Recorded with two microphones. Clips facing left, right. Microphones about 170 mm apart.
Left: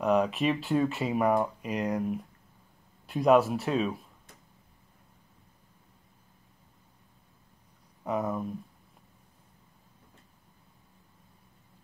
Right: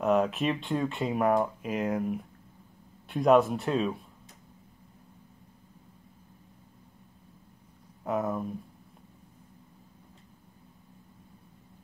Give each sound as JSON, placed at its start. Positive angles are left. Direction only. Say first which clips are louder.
{"t": 0.0, "sound": "speech", "louder": "even", "side_deg": 0}
{"t": 8.0, "sound": "speech", "louder": "right 1 dB", "side_deg": 0}